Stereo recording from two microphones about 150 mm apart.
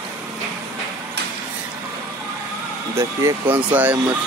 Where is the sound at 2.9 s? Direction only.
20° right (ahead or behind).